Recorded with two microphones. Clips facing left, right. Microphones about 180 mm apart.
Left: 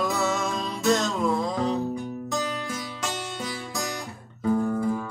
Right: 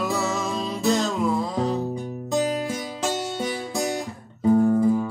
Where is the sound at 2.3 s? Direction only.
30° right (ahead or behind).